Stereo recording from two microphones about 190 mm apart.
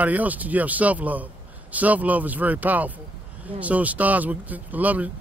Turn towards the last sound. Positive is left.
turn(degrees=-10)  # may be behind; listen again after turning